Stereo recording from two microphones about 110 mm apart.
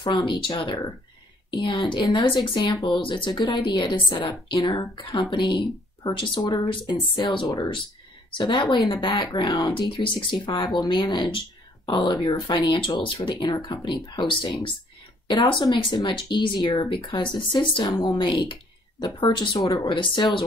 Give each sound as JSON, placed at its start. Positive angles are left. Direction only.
{"t": 0.0, "sound": "speech", "side_deg": 45}
{"t": 7.4, "sound": "speech", "side_deg": 35}
{"t": 8.3, "sound": "speech", "side_deg": 45}